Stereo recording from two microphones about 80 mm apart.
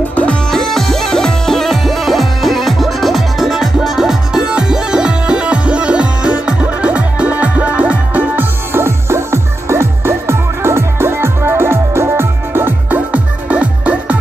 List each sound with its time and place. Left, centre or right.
0.1 s music: centre
0.5 s music: centre